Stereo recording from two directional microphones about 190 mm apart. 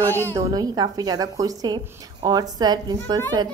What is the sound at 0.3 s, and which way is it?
A woman's voice, 20° right (ahead or behind).